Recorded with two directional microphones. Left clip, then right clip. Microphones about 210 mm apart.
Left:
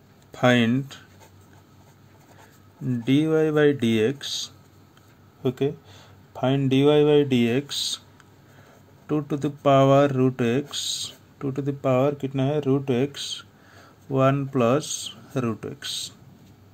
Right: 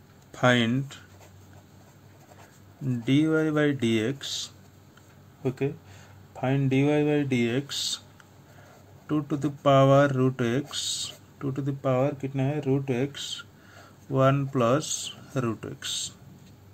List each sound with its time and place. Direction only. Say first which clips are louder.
0.3 s speech: left 3 dB; 15° left (ahead or behind)
2.9 s speech: left 3 dB; 10° left (ahead or behind)
6.3 s speech: left 4 dB; 30° left (ahead or behind)
7.6 s speech: left 3 dB; 10° left (ahead or behind)
9.0 s speech: left 2 dB; 10° left (ahead or behind)
12.1 s speech: left 5 dB; 30° left (ahead or behind); by 16.1 s 10° left (ahead or behind)